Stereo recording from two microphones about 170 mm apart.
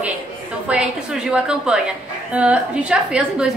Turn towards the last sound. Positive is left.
turn(degrees=-5)  # may be behind; listen again after turning